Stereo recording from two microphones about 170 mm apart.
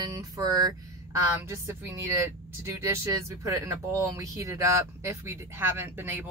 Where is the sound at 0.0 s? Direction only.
20° right (ahead or behind).